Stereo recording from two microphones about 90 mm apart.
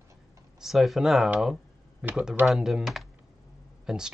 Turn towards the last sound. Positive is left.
turn(degrees=-5)  # may be behind; listen again after turning